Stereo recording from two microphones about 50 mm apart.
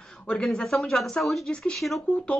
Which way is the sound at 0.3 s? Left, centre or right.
Centre.